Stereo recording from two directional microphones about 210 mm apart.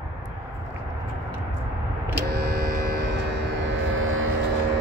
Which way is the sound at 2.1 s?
50° right (ahead or behind).